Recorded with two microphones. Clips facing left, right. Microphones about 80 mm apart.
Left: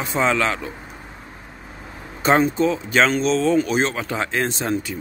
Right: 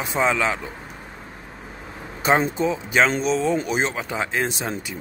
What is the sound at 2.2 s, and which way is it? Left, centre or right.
Speech, centre.